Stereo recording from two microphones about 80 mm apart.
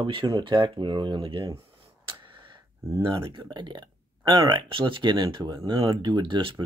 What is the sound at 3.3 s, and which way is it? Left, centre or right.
Speech, right.